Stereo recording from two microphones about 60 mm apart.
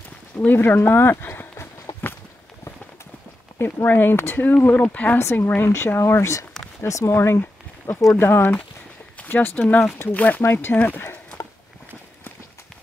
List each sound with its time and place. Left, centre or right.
0.4 s speech: left
1.9 s walk: left
3.5 s speech: left
4.7 s speech: left
5.2 s speech: left